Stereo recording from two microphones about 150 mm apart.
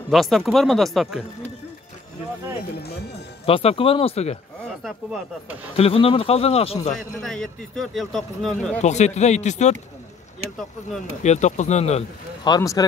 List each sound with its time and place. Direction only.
0.1 s a man's voice: centre (ahead or behind)
2.8 s speech: 90° left
3.4 s speech: 40° left (ahead or behind)
5.8 s speech: 40° left (ahead or behind)
7.0 s a man's voice: 5° left (ahead or behind)
8.8 s speech: 50° left (ahead or behind)
11.2 s speech: 50° left (ahead or behind)
12.4 s speech: 25° left (ahead or behind)